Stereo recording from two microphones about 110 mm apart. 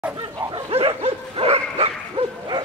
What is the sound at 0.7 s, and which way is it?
Bow-wow, 60° right (ahead or behind).